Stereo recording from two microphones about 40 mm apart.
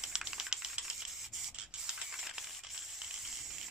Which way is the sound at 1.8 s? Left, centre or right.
Centre.